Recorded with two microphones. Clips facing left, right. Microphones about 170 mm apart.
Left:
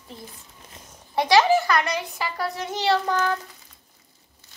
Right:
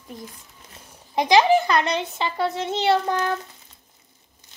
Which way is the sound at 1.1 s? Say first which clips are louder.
Right 1 dB; 20° right (ahead or behind).